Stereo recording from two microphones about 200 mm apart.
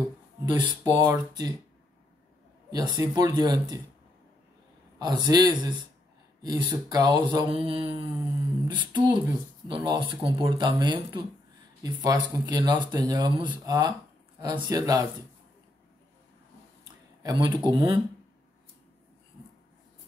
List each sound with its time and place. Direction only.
0.6 s mantra: 25° right (ahead or behind)
2.7 s mantra: 20° right (ahead or behind)
4.9 s mantra: 20° right (ahead or behind)
17.2 s speech: 20° right (ahead or behind)
17.6 s mantra: 25° right (ahead or behind)